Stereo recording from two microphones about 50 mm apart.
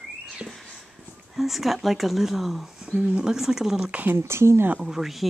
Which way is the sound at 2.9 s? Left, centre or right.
Centre.